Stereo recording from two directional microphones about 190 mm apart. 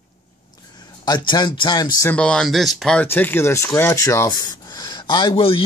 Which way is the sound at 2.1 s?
5° left (ahead or behind).